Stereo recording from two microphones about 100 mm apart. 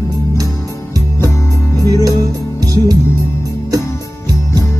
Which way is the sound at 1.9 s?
35° right (ahead or behind).